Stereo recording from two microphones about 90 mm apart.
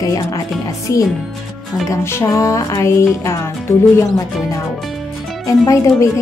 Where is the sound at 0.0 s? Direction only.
40° left (ahead or behind).